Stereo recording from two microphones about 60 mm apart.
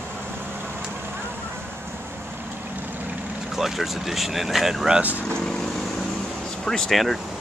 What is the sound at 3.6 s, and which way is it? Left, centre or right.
Speech, centre.